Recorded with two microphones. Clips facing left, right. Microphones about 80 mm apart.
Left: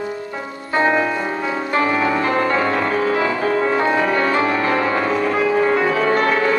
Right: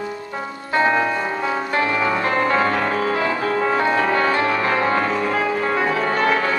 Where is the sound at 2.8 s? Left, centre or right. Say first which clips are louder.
Left 2 dB; centre.